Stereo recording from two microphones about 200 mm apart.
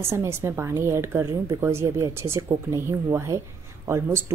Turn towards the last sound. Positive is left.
turn(degrees=-15)  # may be behind; listen again after turning